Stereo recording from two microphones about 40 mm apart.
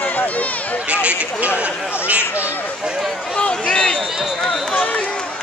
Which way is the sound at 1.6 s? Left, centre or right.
Right.